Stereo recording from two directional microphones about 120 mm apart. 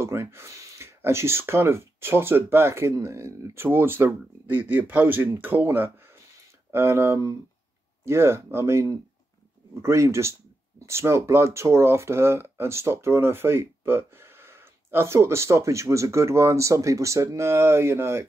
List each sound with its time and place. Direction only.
0.0 s speech: 20° right (ahead or behind)